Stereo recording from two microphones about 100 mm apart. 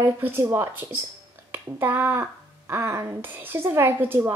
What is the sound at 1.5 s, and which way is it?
A woman's voice, 20° right (ahead or behind).